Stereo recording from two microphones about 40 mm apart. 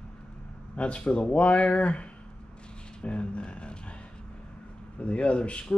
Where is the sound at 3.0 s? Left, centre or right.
Left.